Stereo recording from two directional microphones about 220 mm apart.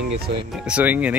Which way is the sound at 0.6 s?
5° right (ahead or behind).